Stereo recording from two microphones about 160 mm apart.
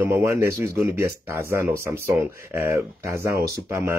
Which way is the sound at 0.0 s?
15° right (ahead or behind).